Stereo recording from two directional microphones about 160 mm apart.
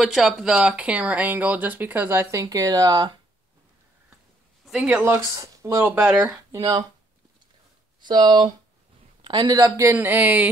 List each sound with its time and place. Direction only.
0.0 s speech: centre (ahead or behind); by 3.2 s 25° right (ahead or behind)
4.6 s speech: 5° right (ahead or behind)
5.1 s speech: 20° right (ahead or behind)
6.6 s speech: 25° right (ahead or behind)
8.0 s speech: 30° right (ahead or behind); by 10.5 s 10° right (ahead or behind)